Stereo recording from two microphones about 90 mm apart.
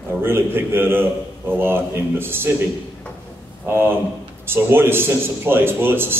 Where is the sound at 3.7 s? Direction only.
25° right (ahead or behind).